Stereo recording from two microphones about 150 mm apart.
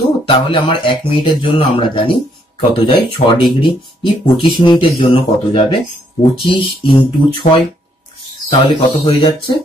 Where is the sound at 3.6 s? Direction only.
30° left (ahead or behind).